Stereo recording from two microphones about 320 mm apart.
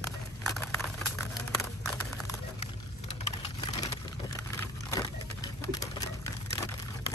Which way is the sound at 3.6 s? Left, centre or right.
Centre.